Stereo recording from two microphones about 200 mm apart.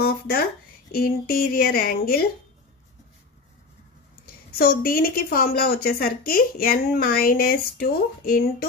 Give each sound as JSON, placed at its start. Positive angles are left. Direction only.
{"t": 0.0, "sound": "a sound", "side_deg": 50}
{"t": 0.9, "sound": "a woman's voice", "side_deg": 50}
{"t": 4.6, "sound": "a woman's voice", "side_deg": 50}